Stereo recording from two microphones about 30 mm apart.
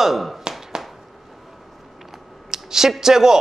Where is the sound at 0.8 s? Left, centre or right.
Centre.